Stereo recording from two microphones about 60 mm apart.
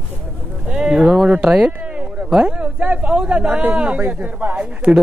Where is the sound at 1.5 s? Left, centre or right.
Right.